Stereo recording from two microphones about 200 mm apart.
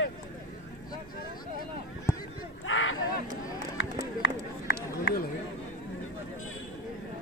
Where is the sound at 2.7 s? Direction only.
75° left (ahead or behind).